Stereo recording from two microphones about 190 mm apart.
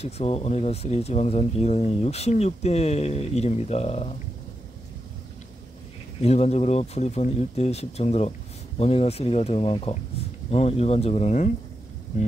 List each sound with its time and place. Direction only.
0.0 s speech: 35° left (ahead or behind)
6.2 s speech: 35° left (ahead or behind)